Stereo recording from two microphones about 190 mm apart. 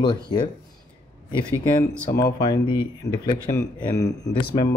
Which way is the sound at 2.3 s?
25° left (ahead or behind).